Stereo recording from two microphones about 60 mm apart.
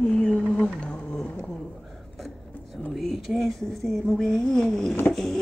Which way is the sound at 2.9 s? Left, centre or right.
Centre.